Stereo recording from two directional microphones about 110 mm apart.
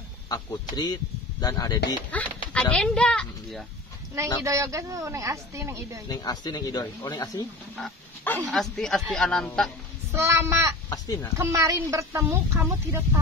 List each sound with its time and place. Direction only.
0.3 s speech: 40° left (ahead or behind)
2.0 s speech: 10° left (ahead or behind)
4.4 s a woman's voice: 25° right (ahead or behind)
6.0 s speech: 40° left (ahead or behind)
8.5 s speech: 5° left (ahead or behind)
10.1 s a woman's voice: 25° right (ahead or behind)